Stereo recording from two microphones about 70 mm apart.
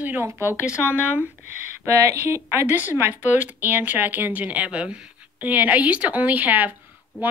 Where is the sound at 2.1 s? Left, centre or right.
Right.